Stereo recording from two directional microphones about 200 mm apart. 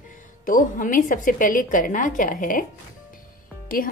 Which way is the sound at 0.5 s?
40° left (ahead or behind).